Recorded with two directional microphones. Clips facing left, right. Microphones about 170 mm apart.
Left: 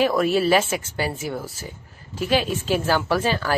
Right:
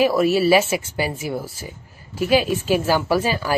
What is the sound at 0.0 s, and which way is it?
A woman's voice, 10° right (ahead or behind).